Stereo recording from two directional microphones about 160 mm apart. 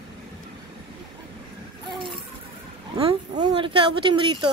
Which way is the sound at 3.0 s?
35° right (ahead or behind).